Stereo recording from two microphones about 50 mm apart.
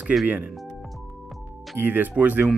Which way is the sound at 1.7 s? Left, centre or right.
Right.